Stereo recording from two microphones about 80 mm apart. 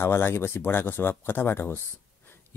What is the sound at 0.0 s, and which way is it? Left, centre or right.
Speech, left.